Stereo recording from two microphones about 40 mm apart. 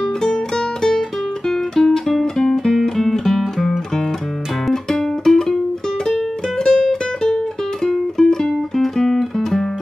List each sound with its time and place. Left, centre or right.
0.0 s music: centre
6.6 s music: centre